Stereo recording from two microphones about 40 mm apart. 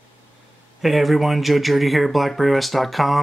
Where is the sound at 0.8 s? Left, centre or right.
Centre.